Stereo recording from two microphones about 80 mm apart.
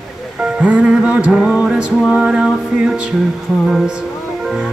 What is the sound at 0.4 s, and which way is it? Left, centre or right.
Music, centre.